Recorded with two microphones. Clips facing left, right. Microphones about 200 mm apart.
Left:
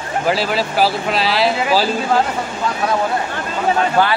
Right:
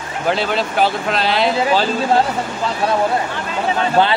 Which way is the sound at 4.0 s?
20° right (ahead or behind).